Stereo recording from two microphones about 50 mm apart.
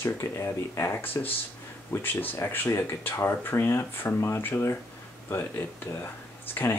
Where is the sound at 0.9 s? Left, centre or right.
Left.